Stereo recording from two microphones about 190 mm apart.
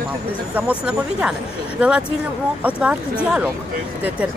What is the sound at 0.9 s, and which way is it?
Speech, 5° right (ahead or behind).